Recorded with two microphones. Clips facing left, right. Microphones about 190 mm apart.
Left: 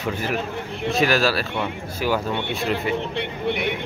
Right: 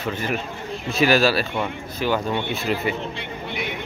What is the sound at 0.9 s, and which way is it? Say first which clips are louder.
Speech: right 2 dB; centre (ahead or behind).